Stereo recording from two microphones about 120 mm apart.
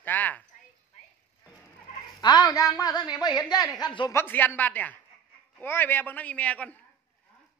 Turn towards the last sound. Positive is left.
turn(degrees=10)  # may be behind; listen again after turning